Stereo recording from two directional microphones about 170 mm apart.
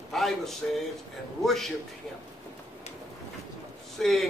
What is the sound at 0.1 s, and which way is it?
A man's voice, centre (ahead or behind).